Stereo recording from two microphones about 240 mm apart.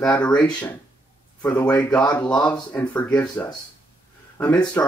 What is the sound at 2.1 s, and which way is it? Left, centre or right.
Speech, centre.